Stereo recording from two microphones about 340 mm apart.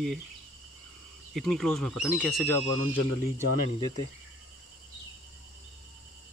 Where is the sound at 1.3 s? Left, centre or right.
Centre.